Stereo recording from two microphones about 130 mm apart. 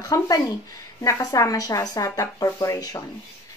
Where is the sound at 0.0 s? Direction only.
30° left (ahead or behind).